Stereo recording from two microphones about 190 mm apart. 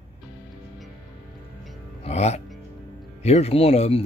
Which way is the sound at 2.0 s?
35° left (ahead or behind).